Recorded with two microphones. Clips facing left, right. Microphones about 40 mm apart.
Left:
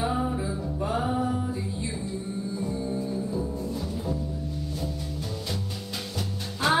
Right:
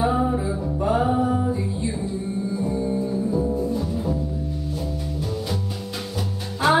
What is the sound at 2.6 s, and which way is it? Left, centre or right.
Music, centre.